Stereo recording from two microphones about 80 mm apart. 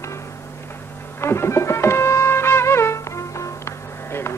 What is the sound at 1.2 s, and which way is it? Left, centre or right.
Music, left.